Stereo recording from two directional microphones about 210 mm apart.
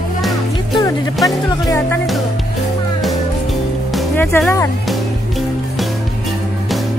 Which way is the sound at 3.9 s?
5° left (ahead or behind).